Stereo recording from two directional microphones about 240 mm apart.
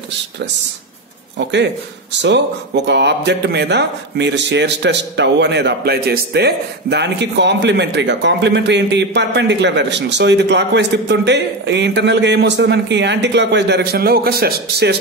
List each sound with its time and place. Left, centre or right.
2.2 s speech: right